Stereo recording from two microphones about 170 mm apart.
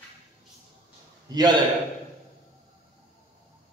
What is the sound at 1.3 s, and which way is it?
Speech, 20° right (ahead or behind).